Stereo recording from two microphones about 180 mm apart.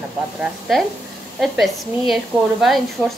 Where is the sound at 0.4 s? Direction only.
Centre (ahead or behind).